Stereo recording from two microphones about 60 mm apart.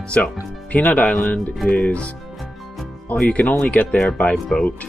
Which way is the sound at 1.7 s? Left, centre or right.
Left.